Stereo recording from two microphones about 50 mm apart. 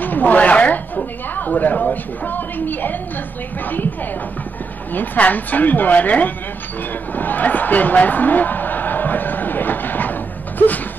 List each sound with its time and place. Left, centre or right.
0.0 s speech: left
4.9 s speech: left